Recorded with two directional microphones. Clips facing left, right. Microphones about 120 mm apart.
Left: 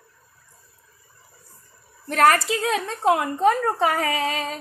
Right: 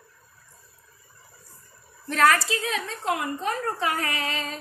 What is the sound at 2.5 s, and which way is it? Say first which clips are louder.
A woman's voice: left 5 dB; 90° left.